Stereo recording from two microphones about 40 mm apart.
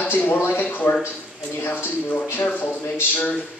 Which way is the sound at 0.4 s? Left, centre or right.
Left.